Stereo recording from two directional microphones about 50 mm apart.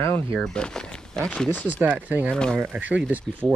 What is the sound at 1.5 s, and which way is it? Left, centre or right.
Speech, left.